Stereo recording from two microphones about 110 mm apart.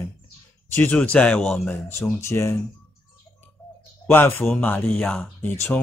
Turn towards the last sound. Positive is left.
turn(degrees=20)  # may be behind; listen again after turning